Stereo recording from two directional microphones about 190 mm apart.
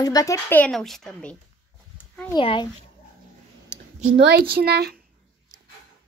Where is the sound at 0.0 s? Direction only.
20° left (ahead or behind); by 1.3 s centre (ahead or behind).